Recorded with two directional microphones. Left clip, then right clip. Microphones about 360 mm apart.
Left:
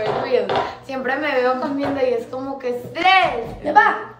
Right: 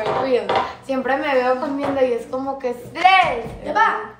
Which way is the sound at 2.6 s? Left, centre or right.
Centre.